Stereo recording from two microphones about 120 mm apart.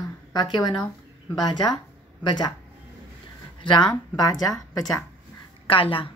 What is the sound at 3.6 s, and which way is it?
Speech, 40° left (ahead or behind).